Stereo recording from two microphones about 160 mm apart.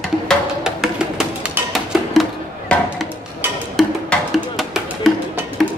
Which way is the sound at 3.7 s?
Centre (ahead or behind).